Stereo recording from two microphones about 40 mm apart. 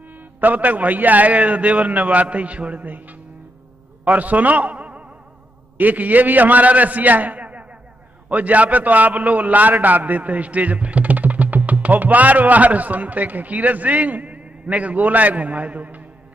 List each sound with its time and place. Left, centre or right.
0.4 s a man's voice: right
2.8 s a man's voice: right
5.8 s a man's voice: right